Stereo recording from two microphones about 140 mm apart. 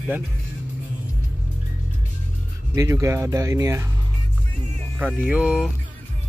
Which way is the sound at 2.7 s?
25° right (ahead or behind).